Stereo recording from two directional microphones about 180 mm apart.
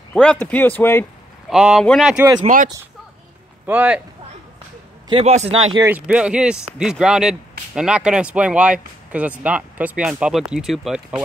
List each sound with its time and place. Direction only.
0.1 s speech: 5° left (ahead or behind)
1.5 s speech: 5° right (ahead or behind)
2.4 s speech: 45° right (ahead or behind)
3.6 s speech: 10° right (ahead or behind)
5.1 s speech: 35° right (ahead or behind)
5.9 s speech: 10° right (ahead or behind)